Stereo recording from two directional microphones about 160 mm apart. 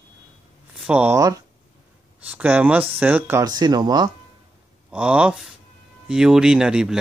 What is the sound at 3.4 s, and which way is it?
Speech, 25° right (ahead or behind).